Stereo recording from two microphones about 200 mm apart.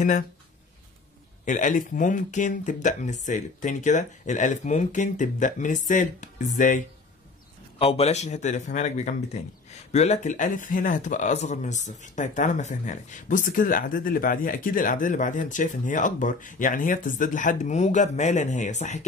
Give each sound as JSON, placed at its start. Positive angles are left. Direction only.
{"t": 1.4, "sound": "speech", "side_deg": 40}
{"t": 7.8, "sound": "speech", "side_deg": 30}